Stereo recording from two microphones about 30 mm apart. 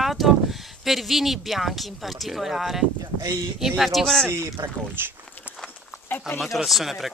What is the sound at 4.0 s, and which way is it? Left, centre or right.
Speech, centre.